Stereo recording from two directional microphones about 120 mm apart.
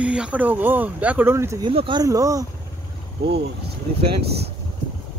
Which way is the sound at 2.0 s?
25° right (ahead or behind).